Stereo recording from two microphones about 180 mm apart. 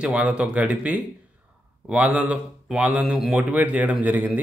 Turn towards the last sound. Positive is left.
turn(degrees=-10)  # may be behind; listen again after turning